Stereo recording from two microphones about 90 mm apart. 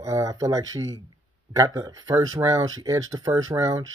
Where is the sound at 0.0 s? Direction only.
40° right (ahead or behind).